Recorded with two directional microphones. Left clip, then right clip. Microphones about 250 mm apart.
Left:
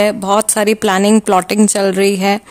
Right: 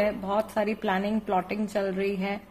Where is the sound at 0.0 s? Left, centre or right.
Left.